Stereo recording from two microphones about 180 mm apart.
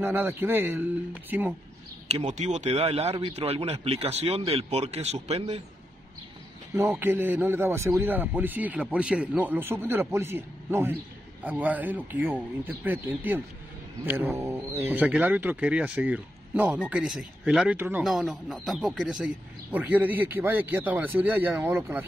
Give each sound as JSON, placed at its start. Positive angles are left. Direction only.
{"t": 0.0, "sound": "speech", "side_deg": -10}
{"t": 2.0, "sound": "a man's voice", "side_deg": -40}
{"t": 7.0, "sound": "speech", "side_deg": -10}
{"t": 18.0, "sound": "speech", "side_deg": 0}